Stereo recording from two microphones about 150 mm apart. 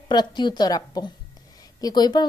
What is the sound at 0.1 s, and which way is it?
Speech, 30° left (ahead or behind).